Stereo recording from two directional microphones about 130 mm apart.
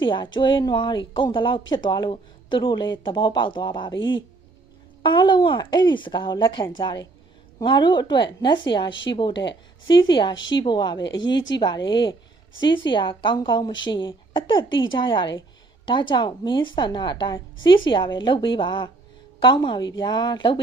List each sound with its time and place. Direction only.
0.0 s a woman's voice: 35° left (ahead or behind)